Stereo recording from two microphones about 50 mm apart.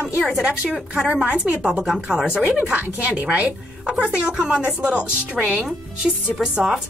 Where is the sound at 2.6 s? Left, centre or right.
Right.